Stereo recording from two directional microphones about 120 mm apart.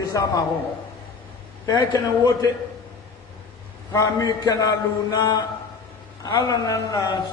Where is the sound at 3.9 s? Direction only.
30° left (ahead or behind).